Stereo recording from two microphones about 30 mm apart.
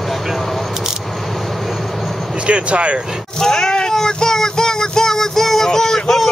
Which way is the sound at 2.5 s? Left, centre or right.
Right.